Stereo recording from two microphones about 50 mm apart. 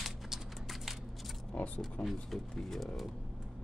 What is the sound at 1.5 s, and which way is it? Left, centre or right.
Speech, left.